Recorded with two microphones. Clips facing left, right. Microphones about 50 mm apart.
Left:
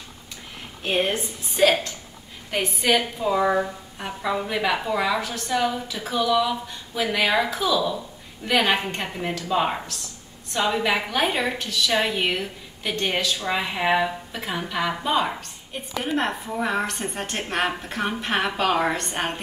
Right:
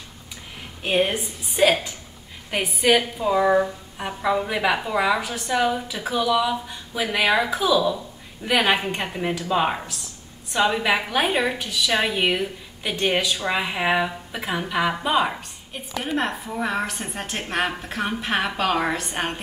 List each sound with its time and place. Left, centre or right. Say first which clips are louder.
0.8 s a woman's voice: right 2 dB; centre